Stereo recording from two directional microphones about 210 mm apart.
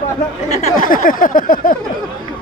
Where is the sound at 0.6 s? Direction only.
40° left (ahead or behind).